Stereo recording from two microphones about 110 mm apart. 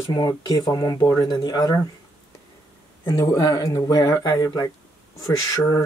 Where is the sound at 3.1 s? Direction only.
30° left (ahead or behind).